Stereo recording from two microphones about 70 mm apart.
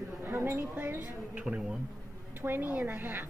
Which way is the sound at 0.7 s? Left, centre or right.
Right.